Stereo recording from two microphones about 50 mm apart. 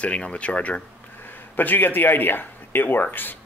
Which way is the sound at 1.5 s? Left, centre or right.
Left.